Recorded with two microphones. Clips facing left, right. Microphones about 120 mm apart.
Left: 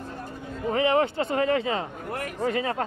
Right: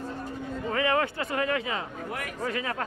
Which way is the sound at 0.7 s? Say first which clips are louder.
Left 4 dB; 25° left (ahead or behind).